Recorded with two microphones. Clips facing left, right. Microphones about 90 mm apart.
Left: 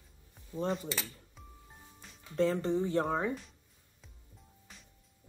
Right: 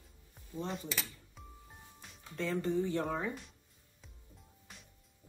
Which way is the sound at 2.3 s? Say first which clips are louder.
Left 5 dB; 30° left (ahead or behind).